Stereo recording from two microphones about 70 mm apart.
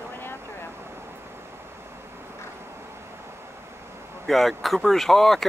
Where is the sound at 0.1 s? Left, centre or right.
Left.